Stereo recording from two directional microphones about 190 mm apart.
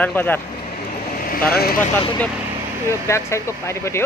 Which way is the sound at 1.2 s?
50° left (ahead or behind).